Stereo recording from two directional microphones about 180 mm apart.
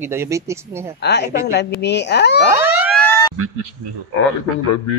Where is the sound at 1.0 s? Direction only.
70° left (ahead or behind).